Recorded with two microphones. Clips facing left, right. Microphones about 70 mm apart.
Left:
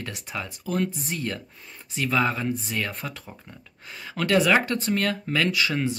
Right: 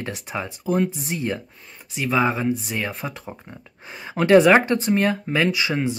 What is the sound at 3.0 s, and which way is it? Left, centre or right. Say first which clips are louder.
Speech: right 5 dB; right.